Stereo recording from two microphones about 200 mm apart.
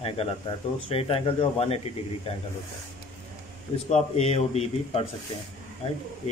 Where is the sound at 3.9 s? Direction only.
35° left (ahead or behind).